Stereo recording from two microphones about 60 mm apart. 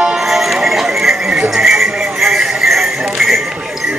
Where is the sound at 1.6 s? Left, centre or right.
Centre.